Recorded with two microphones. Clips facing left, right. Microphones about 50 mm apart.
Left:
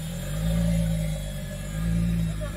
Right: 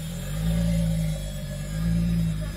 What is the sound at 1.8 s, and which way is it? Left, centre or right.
Music, centre.